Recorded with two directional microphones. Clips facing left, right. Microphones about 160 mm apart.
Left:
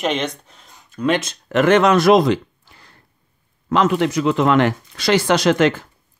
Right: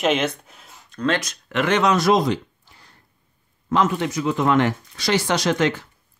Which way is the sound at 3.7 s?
75° left (ahead or behind).